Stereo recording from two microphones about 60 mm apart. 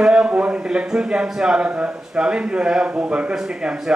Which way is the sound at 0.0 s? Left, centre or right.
Centre.